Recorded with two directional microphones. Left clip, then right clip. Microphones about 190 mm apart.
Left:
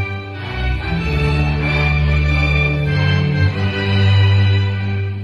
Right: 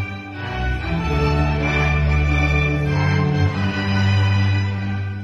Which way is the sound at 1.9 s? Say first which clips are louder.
Left 2 dB; 45° right (ahead or behind).